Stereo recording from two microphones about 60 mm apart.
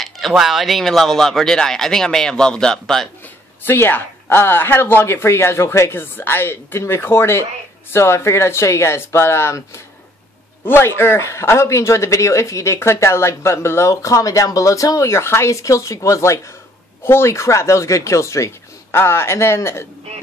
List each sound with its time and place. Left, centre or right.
0.0 s speech: centre
3.6 s a woman's voice: left
10.6 s a man's voice: left
14.0 s speech: left
15.0 s speech: left
17.0 s a woman's voice: left